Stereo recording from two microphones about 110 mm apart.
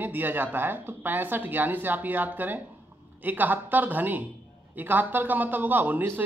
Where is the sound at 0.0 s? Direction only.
15° right (ahead or behind).